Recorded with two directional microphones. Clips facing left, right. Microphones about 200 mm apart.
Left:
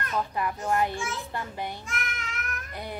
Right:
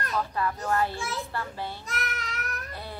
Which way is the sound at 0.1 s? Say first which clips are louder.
Even; 15° left (ahead or behind).